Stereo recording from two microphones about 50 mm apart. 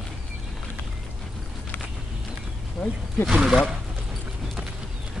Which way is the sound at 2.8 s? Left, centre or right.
Centre.